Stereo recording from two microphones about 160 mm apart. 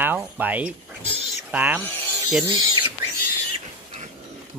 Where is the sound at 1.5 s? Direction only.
10° right (ahead or behind).